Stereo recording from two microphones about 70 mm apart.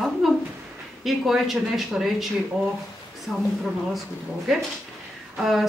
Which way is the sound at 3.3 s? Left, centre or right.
Centre.